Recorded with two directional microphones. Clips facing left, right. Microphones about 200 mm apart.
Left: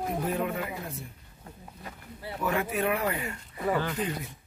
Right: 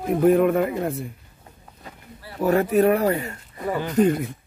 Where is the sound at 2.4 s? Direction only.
40° right (ahead or behind).